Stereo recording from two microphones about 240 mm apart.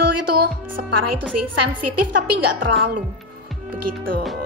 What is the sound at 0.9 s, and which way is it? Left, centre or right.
A woman's voice, right.